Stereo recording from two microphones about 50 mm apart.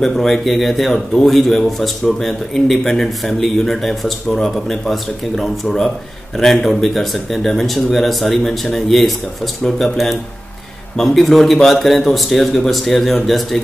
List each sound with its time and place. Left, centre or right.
0.0 s speech: centre